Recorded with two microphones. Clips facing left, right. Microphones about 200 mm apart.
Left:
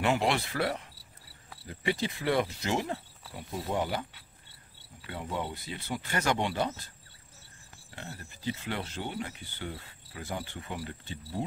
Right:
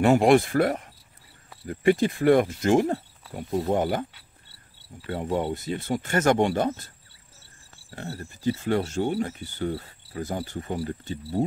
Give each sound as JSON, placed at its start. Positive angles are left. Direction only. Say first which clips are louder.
{"t": 0.0, "sound": "speech", "louder": "right 10 dB", "side_deg": -50}
{"t": 5.0, "sound": "speech", "louder": "right 9 dB", "side_deg": -50}
{"t": 7.9, "sound": "speech", "louder": "right 8 dB", "side_deg": -40}